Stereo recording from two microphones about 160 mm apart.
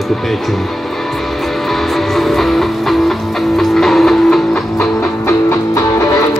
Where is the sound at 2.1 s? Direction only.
Centre (ahead or behind).